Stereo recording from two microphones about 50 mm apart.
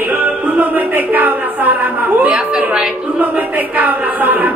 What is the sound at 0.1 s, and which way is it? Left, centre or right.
Music, right.